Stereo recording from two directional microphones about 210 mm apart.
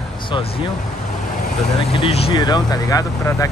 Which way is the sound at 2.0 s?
25° left (ahead or behind).